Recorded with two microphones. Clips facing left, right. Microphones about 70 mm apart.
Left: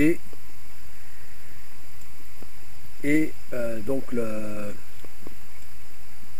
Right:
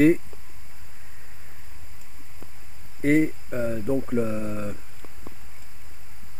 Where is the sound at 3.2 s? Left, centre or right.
Centre.